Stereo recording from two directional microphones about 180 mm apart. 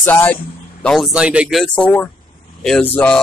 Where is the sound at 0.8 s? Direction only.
Centre (ahead or behind).